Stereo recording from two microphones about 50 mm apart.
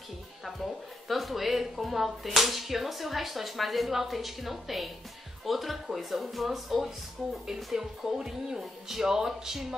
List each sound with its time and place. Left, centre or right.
1.0 s speech: centre